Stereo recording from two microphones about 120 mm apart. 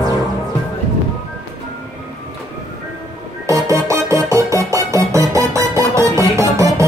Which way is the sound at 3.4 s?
25° right (ahead or behind).